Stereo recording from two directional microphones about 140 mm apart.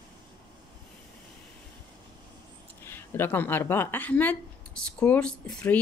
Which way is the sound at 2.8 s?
15° left (ahead or behind).